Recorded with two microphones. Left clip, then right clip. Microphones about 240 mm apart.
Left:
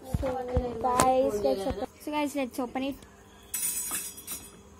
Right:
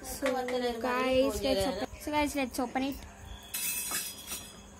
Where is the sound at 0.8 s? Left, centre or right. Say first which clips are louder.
Left 6 dB; right.